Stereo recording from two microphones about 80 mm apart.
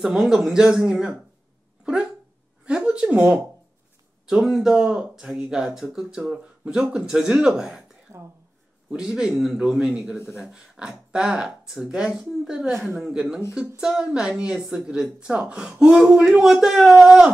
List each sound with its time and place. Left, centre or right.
0.0 s speech: centre
2.6 s a sound: centre
4.3 s a woman's voice: centre
8.1 s speech: right
8.9 s a woman's voice: centre